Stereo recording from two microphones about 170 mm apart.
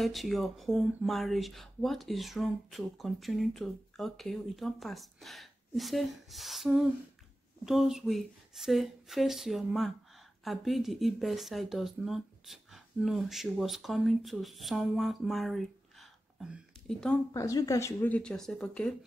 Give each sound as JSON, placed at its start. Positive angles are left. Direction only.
{"t": 0.0, "sound": "speech", "side_deg": 0}
{"t": 17.3, "sound": "speech", "side_deg": 20}